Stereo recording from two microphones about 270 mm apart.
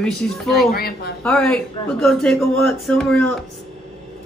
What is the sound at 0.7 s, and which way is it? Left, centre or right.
Speech, left.